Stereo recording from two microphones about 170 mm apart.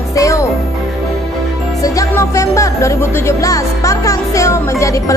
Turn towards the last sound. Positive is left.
turn(degrees=20)  # may be behind; listen again after turning